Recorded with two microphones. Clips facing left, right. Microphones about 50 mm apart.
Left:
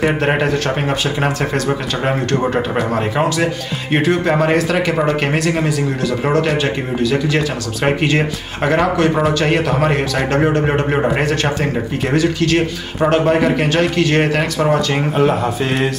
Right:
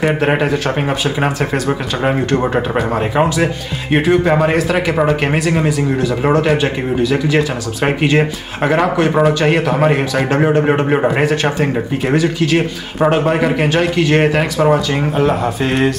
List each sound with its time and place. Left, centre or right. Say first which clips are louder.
0.0 s speech: right 1 dB; centre